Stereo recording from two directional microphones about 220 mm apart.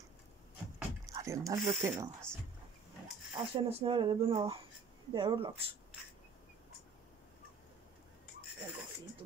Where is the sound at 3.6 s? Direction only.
25° right (ahead or behind).